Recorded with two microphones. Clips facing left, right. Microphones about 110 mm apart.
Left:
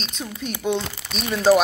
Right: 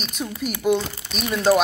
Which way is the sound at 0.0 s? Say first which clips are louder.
Right 3 dB; 5° right (ahead or behind).